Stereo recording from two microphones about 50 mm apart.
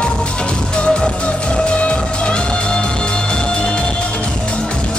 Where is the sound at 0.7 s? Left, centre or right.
Left.